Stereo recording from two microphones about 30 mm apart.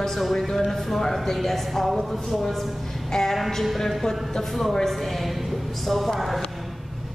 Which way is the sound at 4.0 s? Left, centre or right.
Centre.